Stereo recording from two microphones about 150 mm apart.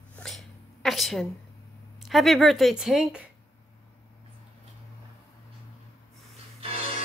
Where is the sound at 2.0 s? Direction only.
Centre (ahead or behind).